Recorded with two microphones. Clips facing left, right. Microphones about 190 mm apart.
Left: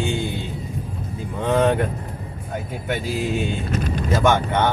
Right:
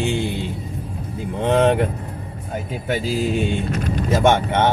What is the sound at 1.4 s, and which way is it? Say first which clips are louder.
Speech: right 2 dB; 25° right (ahead or behind).